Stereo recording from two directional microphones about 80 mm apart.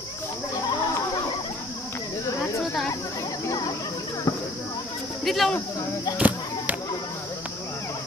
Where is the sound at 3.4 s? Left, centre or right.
Left.